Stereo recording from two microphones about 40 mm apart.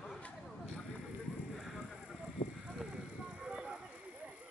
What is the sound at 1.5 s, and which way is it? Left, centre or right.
Clip-clop, centre.